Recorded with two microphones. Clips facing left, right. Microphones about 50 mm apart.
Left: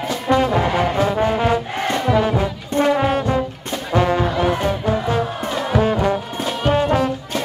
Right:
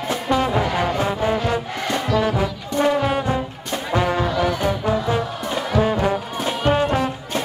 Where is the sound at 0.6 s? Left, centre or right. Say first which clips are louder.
Left 2 dB; left.